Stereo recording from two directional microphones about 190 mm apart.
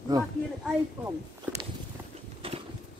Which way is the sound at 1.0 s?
10° right (ahead or behind).